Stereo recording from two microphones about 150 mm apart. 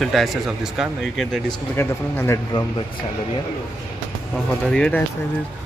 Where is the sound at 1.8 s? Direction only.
15° left (ahead or behind).